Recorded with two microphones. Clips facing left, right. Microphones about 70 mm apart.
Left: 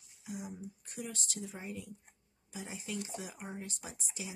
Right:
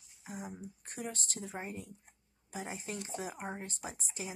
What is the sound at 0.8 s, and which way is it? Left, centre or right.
A woman's voice, right.